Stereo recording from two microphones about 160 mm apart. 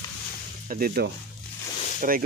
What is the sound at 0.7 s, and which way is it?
Speech, 65° right (ahead or behind).